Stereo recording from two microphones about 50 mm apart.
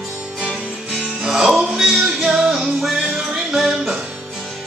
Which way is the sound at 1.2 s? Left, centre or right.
Centre.